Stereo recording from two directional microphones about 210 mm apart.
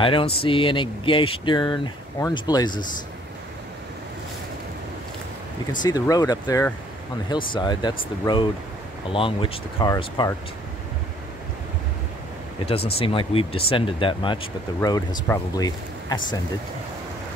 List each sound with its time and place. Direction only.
0.0 s speech: 25° left (ahead or behind)
5.7 s speech: 20° left (ahead or behind)
12.9 s speech: 25° left (ahead or behind)